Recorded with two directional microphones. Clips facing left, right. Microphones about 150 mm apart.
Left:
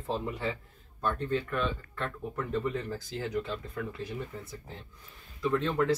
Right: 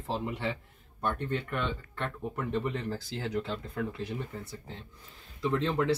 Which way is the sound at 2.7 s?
25° right (ahead or behind).